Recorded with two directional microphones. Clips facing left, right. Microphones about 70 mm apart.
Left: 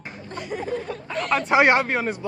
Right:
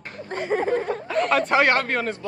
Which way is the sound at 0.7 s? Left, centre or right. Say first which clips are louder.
Right 5 dB; right.